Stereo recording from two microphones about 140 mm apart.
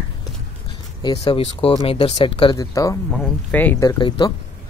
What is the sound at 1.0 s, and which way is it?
Speech, 35° left (ahead or behind).